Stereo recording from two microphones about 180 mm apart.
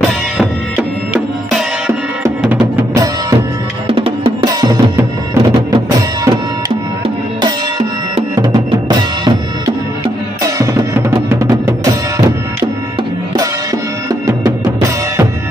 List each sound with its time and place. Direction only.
2.6 s drum: 20° right (ahead or behind)
3.9 s music: 30° right (ahead or behind)
8.4 s drum: 25° right (ahead or behind)
10.4 s drum: 15° right (ahead or behind)
11.5 s music: 20° right (ahead or behind)